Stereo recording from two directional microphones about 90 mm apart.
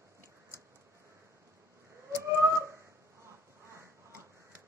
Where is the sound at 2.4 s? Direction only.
30° right (ahead or behind).